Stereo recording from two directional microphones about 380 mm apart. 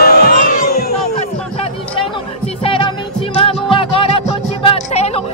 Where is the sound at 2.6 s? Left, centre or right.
Centre.